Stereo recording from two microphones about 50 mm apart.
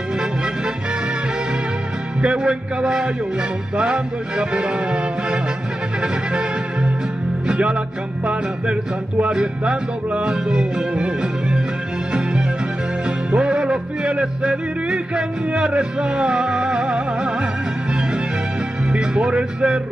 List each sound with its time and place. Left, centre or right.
2.2 s music: centre
7.4 s music: centre
9.3 s music: centre
12.1 s music: centre
18.9 s speech: centre